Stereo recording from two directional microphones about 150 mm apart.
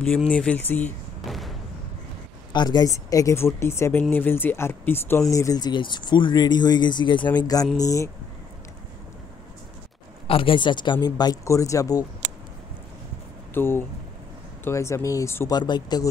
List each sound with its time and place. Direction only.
0.0 s speech: 5° left (ahead or behind)
1.2 s artillery fire: centre (ahead or behind)
2.5 s speech: 30° left (ahead or behind)
10.2 s speech: 35° left (ahead or behind); by 12.0 s 20° left (ahead or behind)
13.5 s speech: 15° left (ahead or behind)